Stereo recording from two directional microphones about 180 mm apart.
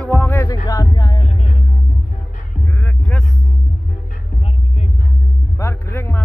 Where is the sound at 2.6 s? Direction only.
10° left (ahead or behind).